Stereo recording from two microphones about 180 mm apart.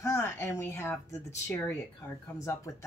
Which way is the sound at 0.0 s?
15° left (ahead or behind).